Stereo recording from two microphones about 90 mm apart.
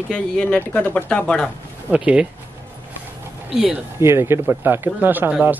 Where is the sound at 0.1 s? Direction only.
10° left (ahead or behind).